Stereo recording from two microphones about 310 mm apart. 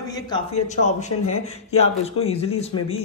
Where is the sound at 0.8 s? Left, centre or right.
Left.